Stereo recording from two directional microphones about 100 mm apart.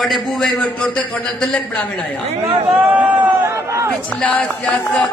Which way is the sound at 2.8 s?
15° right (ahead or behind).